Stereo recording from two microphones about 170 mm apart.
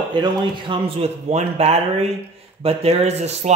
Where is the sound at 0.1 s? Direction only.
30° right (ahead or behind).